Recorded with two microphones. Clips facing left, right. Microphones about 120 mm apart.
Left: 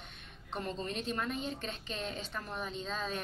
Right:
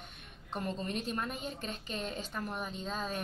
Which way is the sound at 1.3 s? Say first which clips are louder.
Left 2 dB; 45° right (ahead or behind).